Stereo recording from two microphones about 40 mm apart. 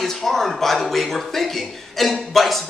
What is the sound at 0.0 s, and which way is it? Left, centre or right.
A man's voice, centre.